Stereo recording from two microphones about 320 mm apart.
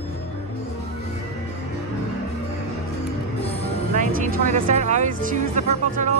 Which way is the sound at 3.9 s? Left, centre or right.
Right.